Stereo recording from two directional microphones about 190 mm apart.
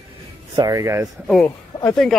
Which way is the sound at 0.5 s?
20° right (ahead or behind).